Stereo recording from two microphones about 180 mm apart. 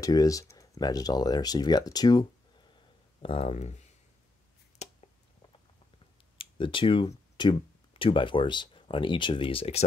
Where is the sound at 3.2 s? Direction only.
30° left (ahead or behind).